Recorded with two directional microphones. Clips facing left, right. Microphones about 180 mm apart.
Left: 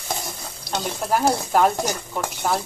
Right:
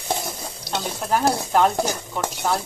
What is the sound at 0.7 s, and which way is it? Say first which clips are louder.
Speech: even; 5° left (ahead or behind).